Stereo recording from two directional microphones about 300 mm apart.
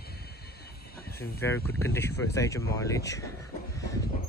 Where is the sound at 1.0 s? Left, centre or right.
Left.